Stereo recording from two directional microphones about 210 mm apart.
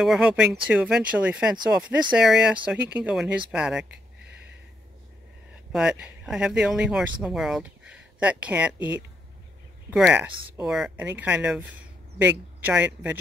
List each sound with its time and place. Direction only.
0.0 s speech: 5° right (ahead or behind)
5.7 s speech: 5° right (ahead or behind)